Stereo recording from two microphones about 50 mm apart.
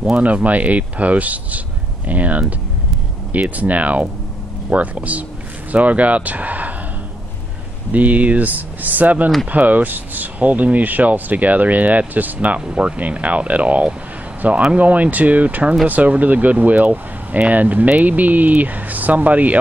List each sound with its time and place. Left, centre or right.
0.1 s speech: right
7.9 s speech: right